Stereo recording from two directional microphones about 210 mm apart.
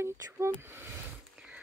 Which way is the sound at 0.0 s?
10° right (ahead or behind).